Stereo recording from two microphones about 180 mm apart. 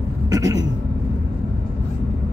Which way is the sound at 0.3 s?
20° right (ahead or behind).